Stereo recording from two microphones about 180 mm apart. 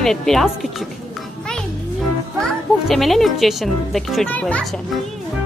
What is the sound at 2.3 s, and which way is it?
A child's voice, centre (ahead or behind).